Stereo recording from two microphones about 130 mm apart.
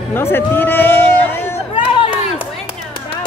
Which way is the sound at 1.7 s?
40° left (ahead or behind).